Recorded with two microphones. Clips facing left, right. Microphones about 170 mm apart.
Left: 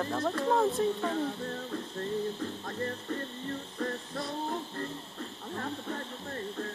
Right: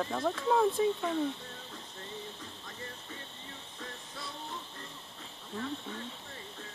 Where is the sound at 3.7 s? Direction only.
55° left (ahead or behind).